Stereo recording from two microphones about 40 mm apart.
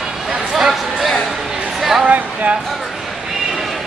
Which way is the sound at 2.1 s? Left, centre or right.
Right.